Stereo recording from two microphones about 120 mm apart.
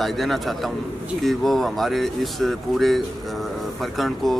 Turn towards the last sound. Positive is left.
turn(degrees=0)  # may be behind; listen again after turning